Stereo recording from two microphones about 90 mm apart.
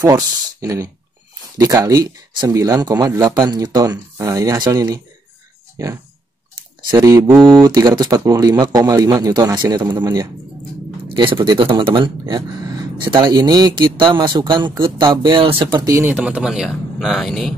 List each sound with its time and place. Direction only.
0.1 s speech: 35° right (ahead or behind)
6.9 s speech: 45° right (ahead or behind)
7.3 s speech: 5° left (ahead or behind)
7.6 s speech: 50° right (ahead or behind)
11.5 s speech: 65° right (ahead or behind)
16.1 s speech: 15° right (ahead or behind)
16.4 s speech: 5° right (ahead or behind)